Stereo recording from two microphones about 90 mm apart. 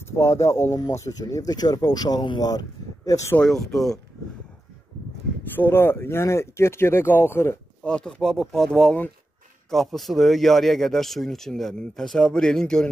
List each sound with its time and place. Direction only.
0.2 s speech: 30° left (ahead or behind); by 2.6 s 50° left (ahead or behind)
3.1 s speech: 35° left (ahead or behind)
3.3 s speech: 5° left (ahead or behind)
5.6 s speech: 25° left (ahead or behind)
7.8 s speech: 10° left (ahead or behind)